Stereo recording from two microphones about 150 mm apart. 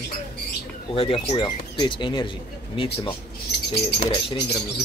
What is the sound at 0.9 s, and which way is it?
Speech, 35° left (ahead or behind).